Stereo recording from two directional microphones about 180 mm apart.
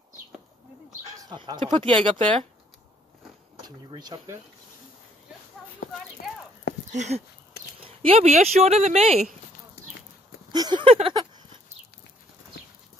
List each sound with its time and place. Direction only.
1.3 s speech: 25° right (ahead or behind)
3.6 s speech: 25° right (ahead or behind)
5.8 s speech: 50° left (ahead or behind)
6.9 s speech: 40° right (ahead or behind)
10.5 s speech: 25° right (ahead or behind)